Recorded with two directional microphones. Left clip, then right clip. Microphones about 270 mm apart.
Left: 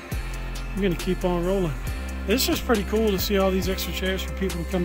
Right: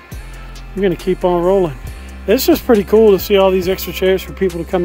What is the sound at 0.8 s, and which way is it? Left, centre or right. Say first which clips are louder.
Speech: right 10 dB; centre.